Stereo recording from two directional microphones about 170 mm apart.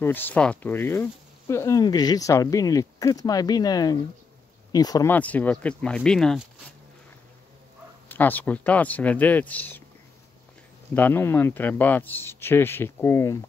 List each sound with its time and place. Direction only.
0.0 s speech: 10° left (ahead or behind)
5.1 s speech: 10° left (ahead or behind)
8.1 s speech: 10° left (ahead or behind)
11.0 s speech: 10° left (ahead or behind)